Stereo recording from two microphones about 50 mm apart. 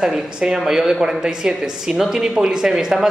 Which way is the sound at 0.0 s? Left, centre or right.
Centre.